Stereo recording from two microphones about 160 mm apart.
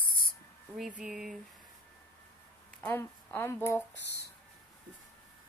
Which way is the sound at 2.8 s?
10° left (ahead or behind).